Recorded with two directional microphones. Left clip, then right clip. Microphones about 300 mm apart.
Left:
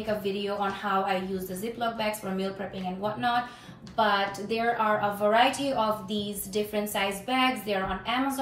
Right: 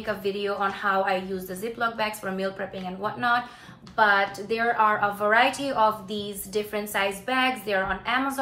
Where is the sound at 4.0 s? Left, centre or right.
Centre.